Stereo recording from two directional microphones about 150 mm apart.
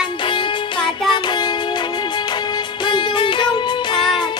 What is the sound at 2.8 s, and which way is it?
Music, 30° left (ahead or behind).